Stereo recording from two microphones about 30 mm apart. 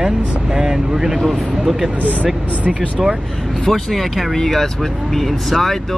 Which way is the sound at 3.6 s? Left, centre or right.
Centre.